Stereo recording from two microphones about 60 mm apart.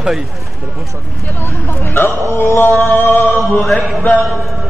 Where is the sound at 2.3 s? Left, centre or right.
Left.